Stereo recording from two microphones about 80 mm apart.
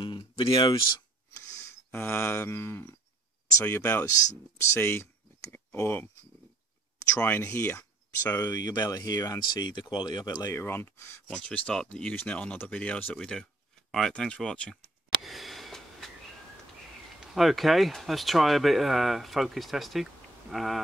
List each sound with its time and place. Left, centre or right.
0.0 s speech: left
1.7 s speech: left
7.2 s speech: left
8.5 s speech: left
10.5 s speech: left
11.2 s speech: centre
15.2 s a sound: centre
17.2 s speech: centre